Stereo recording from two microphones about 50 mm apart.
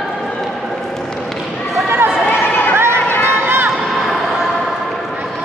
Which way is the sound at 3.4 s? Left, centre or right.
Right.